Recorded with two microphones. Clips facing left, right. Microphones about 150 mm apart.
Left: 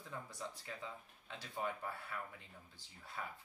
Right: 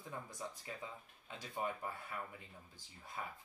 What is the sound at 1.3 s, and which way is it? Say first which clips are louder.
Speech: right 1 dB; 15° right (ahead or behind).